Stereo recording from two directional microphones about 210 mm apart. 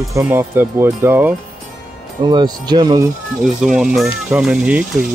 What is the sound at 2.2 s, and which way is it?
Speech, 20° right (ahead or behind).